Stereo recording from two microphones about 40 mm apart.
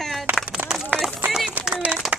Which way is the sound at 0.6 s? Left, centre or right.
Right.